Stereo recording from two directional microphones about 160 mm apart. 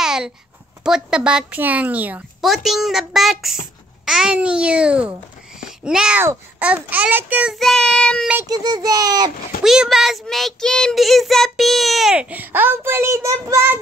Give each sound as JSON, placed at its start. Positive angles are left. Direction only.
{"t": 0.0, "sound": "a sound", "side_deg": -5}
{"t": 0.8, "sound": "a woman's voice", "side_deg": -5}
{"t": 7.5, "sound": "speech", "side_deg": 0}
{"t": 8.5, "sound": "a child's voice", "side_deg": -25}
{"t": 9.6, "sound": "speech", "side_deg": -5}